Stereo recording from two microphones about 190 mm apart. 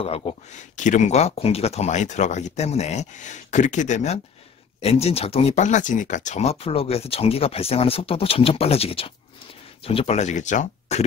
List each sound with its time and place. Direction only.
0.0 s speech: 30° left (ahead or behind)